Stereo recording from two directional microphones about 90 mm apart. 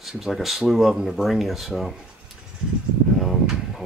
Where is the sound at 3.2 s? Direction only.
Centre (ahead or behind).